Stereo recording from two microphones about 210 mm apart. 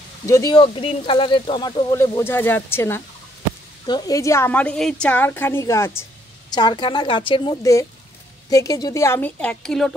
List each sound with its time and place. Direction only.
0.3 s a woman's voice: 20° left (ahead or behind); by 9.9 s centre (ahead or behind)